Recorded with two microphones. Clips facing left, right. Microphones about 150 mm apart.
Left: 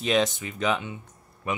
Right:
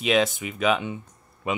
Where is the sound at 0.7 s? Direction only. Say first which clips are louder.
Right 3 dB; 15° right (ahead or behind).